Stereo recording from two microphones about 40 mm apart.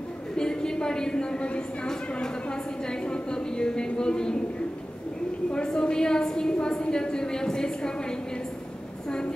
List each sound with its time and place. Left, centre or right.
0.4 s a woman's voice: centre
2.9 s a woman's voice: left
5.5 s a woman's voice: left